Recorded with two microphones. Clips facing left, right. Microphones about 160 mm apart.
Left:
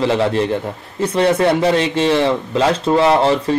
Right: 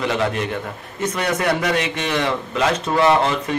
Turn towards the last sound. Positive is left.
turn(degrees=30)  # may be behind; listen again after turning